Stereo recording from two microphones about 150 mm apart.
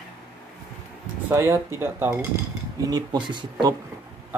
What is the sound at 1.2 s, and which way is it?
Speech, 15° right (ahead or behind).